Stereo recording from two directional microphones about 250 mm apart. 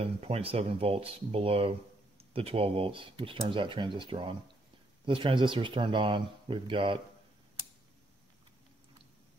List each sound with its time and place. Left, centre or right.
0.0 s speech: right